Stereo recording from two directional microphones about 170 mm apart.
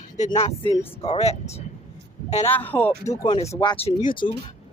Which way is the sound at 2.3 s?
10° left (ahead or behind).